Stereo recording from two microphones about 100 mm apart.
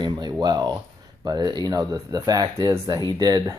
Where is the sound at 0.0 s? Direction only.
45° right (ahead or behind).